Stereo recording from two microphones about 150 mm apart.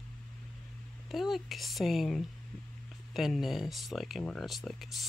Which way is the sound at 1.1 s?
Centre (ahead or behind).